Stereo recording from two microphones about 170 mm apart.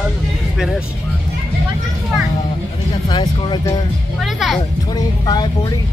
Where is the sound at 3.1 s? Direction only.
25° left (ahead or behind).